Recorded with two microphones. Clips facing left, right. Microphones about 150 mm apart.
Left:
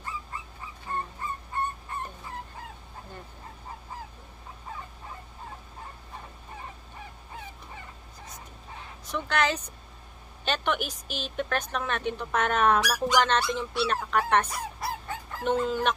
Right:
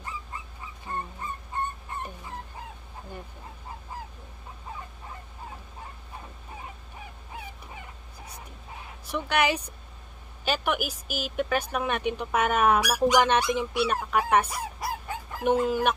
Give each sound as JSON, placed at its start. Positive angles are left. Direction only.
{"t": 1.2, "sound": "dog", "side_deg": -20}
{"t": 9.1, "sound": "speech", "side_deg": -10}